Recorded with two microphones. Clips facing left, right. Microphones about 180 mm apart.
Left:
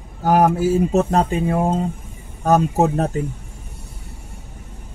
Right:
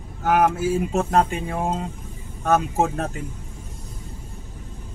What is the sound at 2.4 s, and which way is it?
Speech, 35° left (ahead or behind).